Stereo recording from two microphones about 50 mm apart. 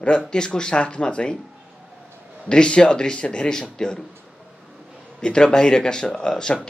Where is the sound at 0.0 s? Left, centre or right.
Centre.